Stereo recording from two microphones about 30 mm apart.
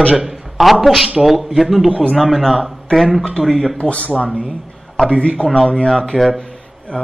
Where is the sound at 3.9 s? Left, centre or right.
Left.